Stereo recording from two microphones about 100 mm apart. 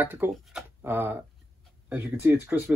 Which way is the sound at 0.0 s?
20° right (ahead or behind).